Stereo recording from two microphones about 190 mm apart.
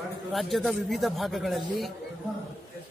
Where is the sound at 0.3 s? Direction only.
Centre (ahead or behind).